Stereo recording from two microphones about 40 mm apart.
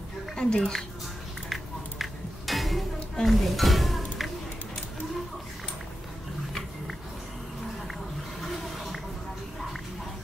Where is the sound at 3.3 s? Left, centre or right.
Centre.